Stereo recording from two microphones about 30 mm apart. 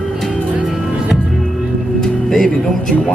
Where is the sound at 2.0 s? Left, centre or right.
Centre.